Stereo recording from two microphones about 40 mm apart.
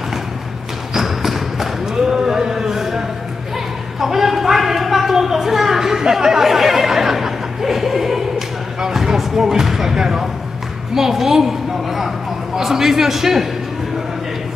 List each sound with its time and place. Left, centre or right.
0.9 s basketball bounce: centre
4.0 s a sound: centre
12.5 s a man's voice: centre